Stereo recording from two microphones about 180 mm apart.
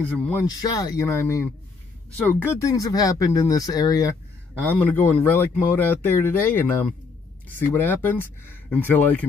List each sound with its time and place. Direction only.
0.5 s a man's voice: 20° left (ahead or behind)